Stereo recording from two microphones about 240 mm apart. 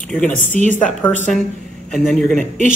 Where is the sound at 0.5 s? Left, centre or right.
Right.